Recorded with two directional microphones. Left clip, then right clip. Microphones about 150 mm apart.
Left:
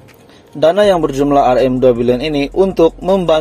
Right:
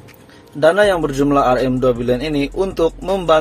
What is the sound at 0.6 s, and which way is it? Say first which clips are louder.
Speech: left 3 dB; 30° left (ahead or behind).